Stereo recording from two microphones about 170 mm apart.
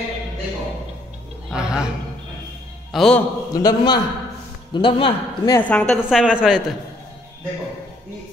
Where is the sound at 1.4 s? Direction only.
5° right (ahead or behind).